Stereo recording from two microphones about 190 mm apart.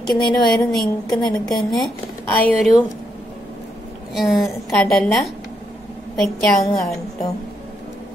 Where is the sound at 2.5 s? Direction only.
Centre (ahead or behind).